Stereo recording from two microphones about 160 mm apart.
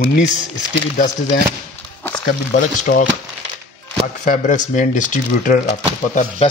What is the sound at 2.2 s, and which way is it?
Speech, 60° left (ahead or behind).